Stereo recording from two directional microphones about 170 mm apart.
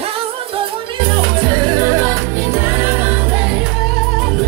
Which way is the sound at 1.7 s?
20° right (ahead or behind).